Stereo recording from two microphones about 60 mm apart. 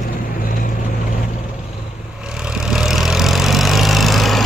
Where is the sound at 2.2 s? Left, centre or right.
Centre.